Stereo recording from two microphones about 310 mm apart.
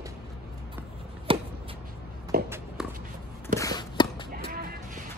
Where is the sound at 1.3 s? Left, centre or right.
Centre.